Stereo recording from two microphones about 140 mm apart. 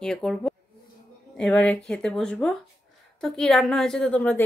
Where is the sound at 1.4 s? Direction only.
10° left (ahead or behind).